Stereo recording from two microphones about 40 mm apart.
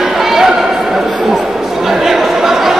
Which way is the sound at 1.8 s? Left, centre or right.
Centre.